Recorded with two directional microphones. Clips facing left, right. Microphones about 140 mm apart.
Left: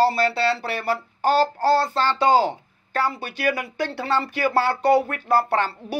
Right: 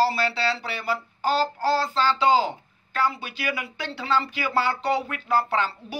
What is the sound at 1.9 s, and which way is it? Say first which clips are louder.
Speech: left 2 dB; 55° left (ahead or behind).